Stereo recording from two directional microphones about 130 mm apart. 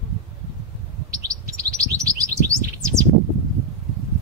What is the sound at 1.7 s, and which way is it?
Chirp, 25° right (ahead or behind).